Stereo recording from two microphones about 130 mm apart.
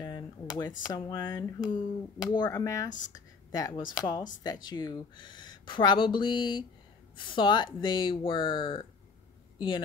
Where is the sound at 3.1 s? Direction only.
30° left (ahead or behind).